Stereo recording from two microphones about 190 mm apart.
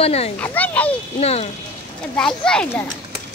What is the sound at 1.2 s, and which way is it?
Speech, 35° left (ahead or behind).